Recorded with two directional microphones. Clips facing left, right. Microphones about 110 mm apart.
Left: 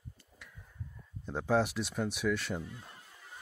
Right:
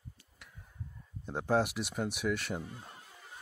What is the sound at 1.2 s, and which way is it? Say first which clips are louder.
Speech: even; 5° right (ahead or behind).